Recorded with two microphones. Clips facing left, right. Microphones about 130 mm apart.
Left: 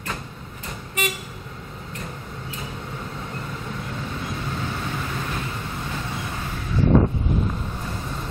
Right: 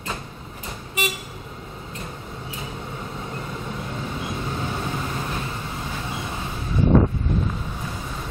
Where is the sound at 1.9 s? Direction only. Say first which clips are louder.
Left 1 dB; 25° right (ahead or behind).